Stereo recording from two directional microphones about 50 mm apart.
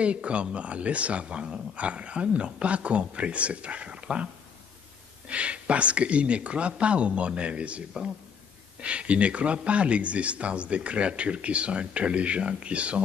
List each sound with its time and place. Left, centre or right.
0.0 s speech: right
5.3 s speech: right
8.8 s speech: right